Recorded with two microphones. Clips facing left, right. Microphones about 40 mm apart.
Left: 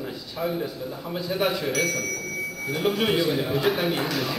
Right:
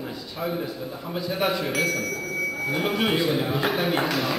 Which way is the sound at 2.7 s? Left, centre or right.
Centre.